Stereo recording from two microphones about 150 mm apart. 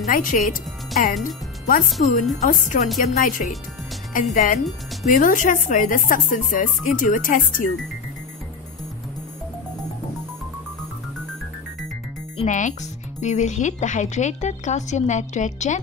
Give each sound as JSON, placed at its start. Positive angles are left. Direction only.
{"t": 0.0, "sound": "speech", "side_deg": 65}
{"t": 3.0, "sound": "speech", "side_deg": 70}
{"t": 12.4, "sound": "speech", "side_deg": 55}